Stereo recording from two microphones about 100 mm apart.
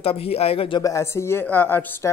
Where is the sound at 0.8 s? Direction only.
30° left (ahead or behind).